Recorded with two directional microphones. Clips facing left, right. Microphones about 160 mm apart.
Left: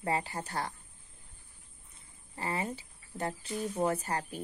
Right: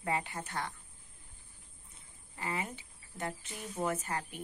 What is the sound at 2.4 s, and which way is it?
Speech, 35° left (ahead or behind).